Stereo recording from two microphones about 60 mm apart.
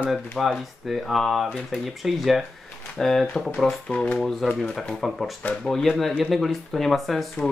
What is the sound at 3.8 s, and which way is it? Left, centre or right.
Speech, centre.